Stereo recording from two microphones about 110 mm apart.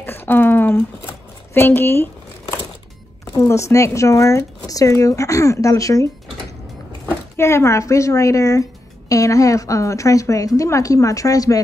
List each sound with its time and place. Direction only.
0.0 s a sound: 20° left (ahead or behind)
1.5 s a woman's voice: 20° left (ahead or behind)
3.3 s a woman's voice: 25° left (ahead or behind)
7.3 s a woman's voice: 25° left (ahead or behind)